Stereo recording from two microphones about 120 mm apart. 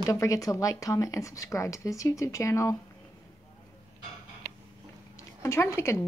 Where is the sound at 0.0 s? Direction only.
25° left (ahead or behind).